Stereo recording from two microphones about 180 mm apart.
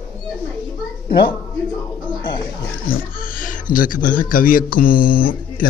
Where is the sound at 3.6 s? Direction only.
50° left (ahead or behind).